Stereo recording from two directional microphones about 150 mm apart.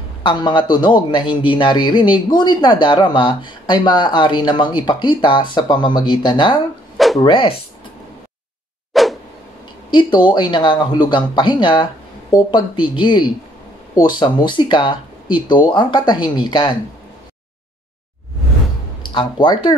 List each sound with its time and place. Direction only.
0.2 s a man's voice: 30° left (ahead or behind)
8.9 s a sound: centre (ahead or behind)
9.8 s a man's voice: 30° left (ahead or behind)
19.1 s speech: 30° left (ahead or behind)